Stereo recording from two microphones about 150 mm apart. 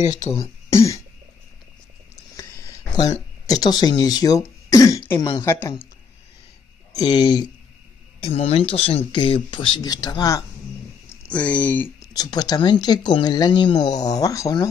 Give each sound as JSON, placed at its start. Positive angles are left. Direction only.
{"t": 0.0, "sound": "speech", "side_deg": 50}
{"t": 0.3, "sound": "speech", "side_deg": 20}
{"t": 3.4, "sound": "speech", "side_deg": 25}
{"t": 6.9, "sound": "speech", "side_deg": 25}
{"t": 8.2, "sound": "speech", "side_deg": 40}
{"t": 11.2, "sound": "speech", "side_deg": 10}
{"t": 12.1, "sound": "speech", "side_deg": 25}